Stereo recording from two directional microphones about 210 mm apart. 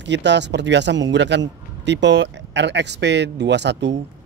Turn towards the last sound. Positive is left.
turn(degrees=-55)  # may be behind; listen again after turning